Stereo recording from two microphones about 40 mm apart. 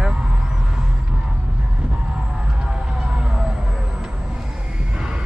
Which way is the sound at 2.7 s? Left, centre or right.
Centre.